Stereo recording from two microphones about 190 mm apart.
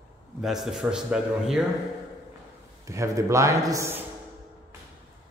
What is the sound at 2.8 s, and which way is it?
A man's voice, 15° right (ahead or behind).